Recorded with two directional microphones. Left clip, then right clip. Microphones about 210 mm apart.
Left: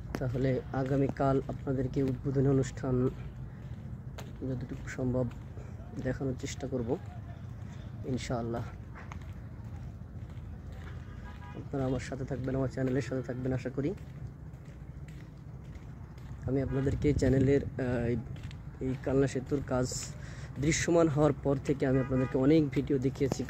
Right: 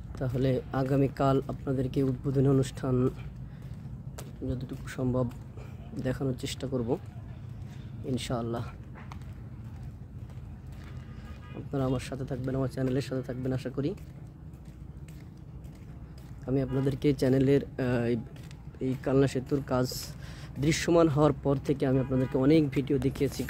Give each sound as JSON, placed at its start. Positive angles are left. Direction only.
{"t": 0.2, "sound": "speech", "side_deg": -15}
{"t": 4.2, "sound": "speech", "side_deg": -10}
{"t": 8.1, "sound": "speech", "side_deg": -10}
{"t": 11.7, "sound": "speech", "side_deg": -15}
{"t": 16.4, "sound": "speech", "side_deg": -15}